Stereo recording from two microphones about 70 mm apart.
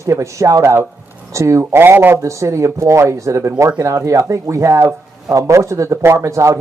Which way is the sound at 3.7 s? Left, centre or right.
Right.